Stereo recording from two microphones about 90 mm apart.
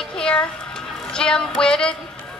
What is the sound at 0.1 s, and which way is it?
Music, 10° left (ahead or behind).